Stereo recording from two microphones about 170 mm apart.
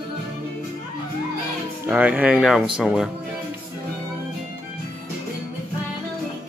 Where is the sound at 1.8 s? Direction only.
10° right (ahead or behind).